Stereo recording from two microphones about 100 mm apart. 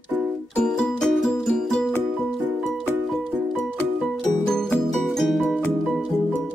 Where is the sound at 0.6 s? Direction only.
5° left (ahead or behind).